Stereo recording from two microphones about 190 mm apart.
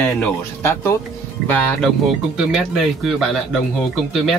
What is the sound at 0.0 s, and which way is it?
Speech, 10° left (ahead or behind).